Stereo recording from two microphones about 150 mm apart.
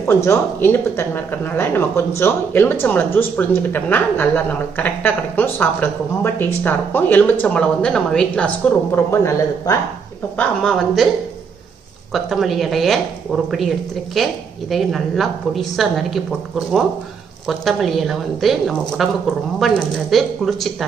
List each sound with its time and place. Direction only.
0.0 s speech: 20° left (ahead or behind)
8.9 s speech: 20° left (ahead or behind)
10.3 s a woman's voice: 5° left (ahead or behind)
12.1 s a woman's voice: centre (ahead or behind)